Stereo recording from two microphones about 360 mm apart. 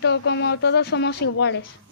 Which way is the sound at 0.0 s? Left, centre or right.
Left.